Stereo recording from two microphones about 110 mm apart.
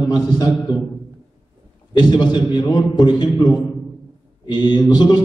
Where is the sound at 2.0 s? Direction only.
40° left (ahead or behind).